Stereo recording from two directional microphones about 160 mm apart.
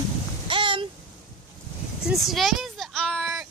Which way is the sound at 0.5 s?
30° right (ahead or behind).